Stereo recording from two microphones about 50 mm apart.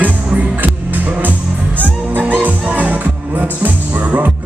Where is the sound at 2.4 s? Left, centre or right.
Right.